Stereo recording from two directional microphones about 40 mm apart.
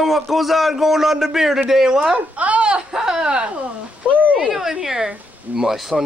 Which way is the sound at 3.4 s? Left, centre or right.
Right.